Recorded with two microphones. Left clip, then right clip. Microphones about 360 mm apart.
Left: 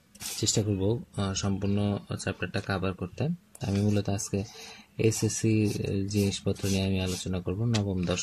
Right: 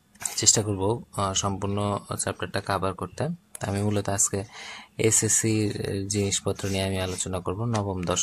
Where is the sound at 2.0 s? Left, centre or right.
Right.